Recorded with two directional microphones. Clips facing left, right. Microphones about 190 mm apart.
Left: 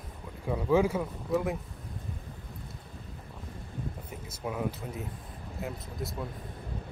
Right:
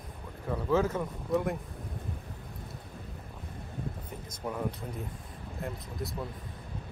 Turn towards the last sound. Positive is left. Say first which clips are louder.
# even
turn(degrees=5)  # may be behind; listen again after turning